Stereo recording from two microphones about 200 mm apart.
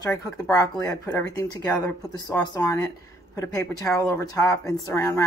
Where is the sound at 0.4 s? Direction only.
15° left (ahead or behind).